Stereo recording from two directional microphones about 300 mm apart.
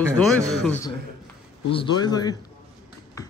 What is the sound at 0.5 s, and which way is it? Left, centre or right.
Speech, centre.